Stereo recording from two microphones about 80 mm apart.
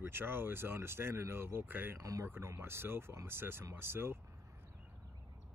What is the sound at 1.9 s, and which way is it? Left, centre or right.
Speech, right.